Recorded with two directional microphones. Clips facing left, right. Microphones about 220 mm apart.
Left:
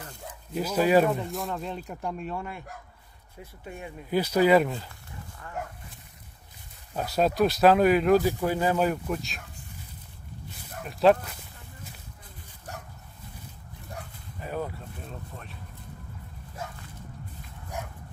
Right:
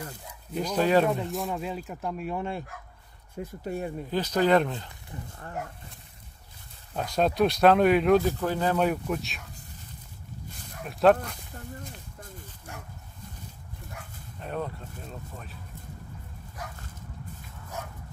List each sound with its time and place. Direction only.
0.6 s speech: 5° left (ahead or behind)
2.3 s speech: 25° right (ahead or behind)
3.3 s speech: 40° right (ahead or behind)
4.1 s speech: 10° left (ahead or behind)
6.9 s speech: 5° left (ahead or behind)
10.8 s speech: centre (ahead or behind)
14.4 s speech: 5° left (ahead or behind)
16.6 s a sound: 25° left (ahead or behind)